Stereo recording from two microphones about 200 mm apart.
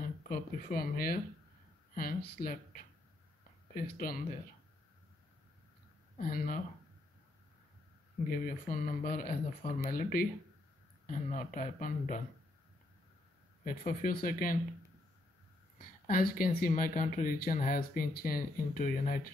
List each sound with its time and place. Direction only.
0.0 s speech: 45° left (ahead or behind)
6.1 s speech: 40° left (ahead or behind)
8.3 s speech: 45° left (ahead or behind)
13.7 s speech: 45° left (ahead or behind)
16.1 s speech: 45° left (ahead or behind)